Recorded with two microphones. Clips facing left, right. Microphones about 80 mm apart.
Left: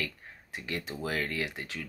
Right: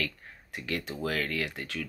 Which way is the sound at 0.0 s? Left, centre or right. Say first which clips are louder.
Right 2 dB; left.